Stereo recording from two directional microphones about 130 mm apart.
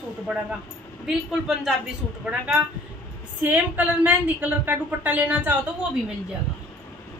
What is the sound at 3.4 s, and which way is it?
A woman's voice, 10° right (ahead or behind).